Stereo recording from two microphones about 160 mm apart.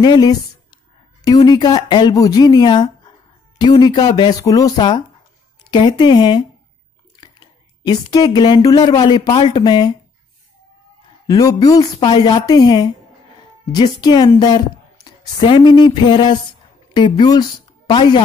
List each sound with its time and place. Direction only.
0.0 s speech: 25° left (ahead or behind)
11.2 s a woman's voice: 20° left (ahead or behind)